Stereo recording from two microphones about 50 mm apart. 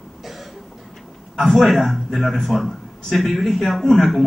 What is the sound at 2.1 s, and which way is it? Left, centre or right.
A man's voice, centre.